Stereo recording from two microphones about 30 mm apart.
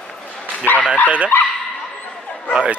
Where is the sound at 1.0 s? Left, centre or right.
Right.